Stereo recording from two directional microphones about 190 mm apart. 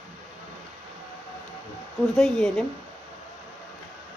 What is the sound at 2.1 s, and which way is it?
Speech, centre (ahead or behind).